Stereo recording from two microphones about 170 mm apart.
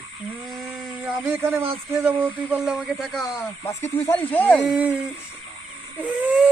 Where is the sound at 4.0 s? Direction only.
10° left (ahead or behind).